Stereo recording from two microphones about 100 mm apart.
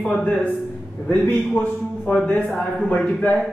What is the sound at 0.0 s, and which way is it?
A man's voice, 10° left (ahead or behind).